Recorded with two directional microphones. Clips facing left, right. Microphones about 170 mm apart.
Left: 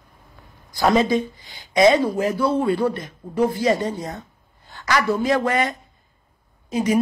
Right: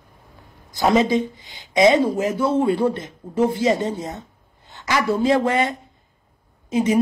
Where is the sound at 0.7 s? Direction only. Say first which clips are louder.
Right 1 dB; 20° right (ahead or behind).